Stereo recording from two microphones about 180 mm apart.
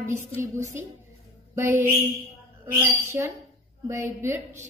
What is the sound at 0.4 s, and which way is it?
A woman's voice, 15° right (ahead or behind).